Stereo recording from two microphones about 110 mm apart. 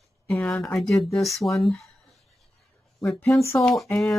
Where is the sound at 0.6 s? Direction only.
5° left (ahead or behind).